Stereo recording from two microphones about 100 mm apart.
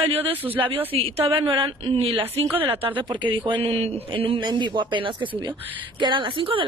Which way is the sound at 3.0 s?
55° right (ahead or behind).